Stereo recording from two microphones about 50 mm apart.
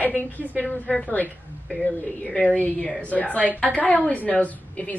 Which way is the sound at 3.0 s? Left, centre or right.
Left.